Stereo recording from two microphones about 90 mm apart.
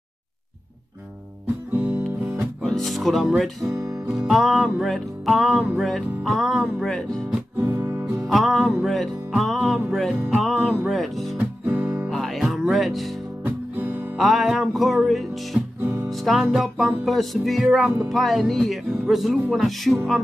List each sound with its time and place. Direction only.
2.6 s speech: 5° left (ahead or behind)
3.8 s music: 5° right (ahead or behind)
7.6 s music: 20° right (ahead or behind)
8.2 s music: centre (ahead or behind)
11.3 s music: 15° right (ahead or behind)
12.1 s music: 5° left (ahead or behind)
13.4 s music: 15° right (ahead or behind)
14.1 s music: centre (ahead or behind)
15.8 s music: 20° right (ahead or behind)
16.1 s music: centre (ahead or behind)